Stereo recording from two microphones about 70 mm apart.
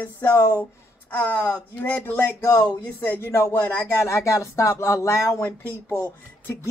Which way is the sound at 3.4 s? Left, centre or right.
Left.